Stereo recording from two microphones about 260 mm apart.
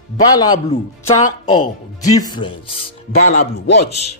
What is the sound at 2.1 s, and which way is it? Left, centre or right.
A man's voice, centre.